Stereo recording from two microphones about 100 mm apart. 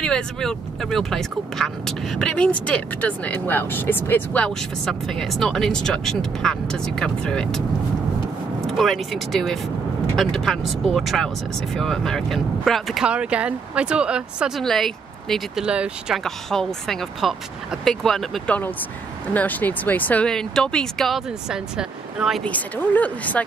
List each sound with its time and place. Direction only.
0.0 s speech: 5° left (ahead or behind)
4.6 s speech: 5° left (ahead or behind)
13.0 s speech: 10° right (ahead or behind)
14.6 s speech: 5° left (ahead or behind)
15.6 s speech: 10° right (ahead or behind)
16.3 s speech: 5° left (ahead or behind)
19.3 s speech: 15° left (ahead or behind)
20.2 s speech: 5° left (ahead or behind)
21.3 s speech: 5° right (ahead or behind)
22.4 s speech: 15° left (ahead or behind)